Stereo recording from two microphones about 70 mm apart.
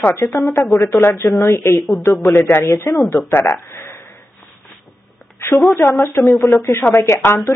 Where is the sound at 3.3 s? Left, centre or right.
Left.